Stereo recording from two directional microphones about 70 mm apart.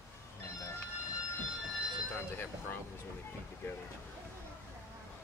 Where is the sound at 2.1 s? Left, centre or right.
Left.